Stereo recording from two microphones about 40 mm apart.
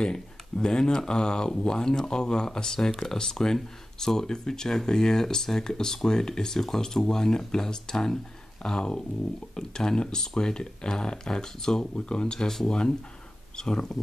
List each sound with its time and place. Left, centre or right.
0.0 s speech: centre